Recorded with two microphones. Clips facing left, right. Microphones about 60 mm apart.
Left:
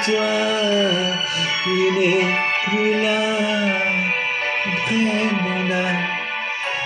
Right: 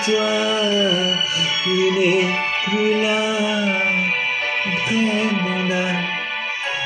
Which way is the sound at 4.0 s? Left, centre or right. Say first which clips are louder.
Right 1 dB; left.